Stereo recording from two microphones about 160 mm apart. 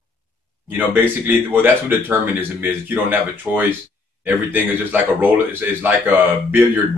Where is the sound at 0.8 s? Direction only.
10° right (ahead or behind).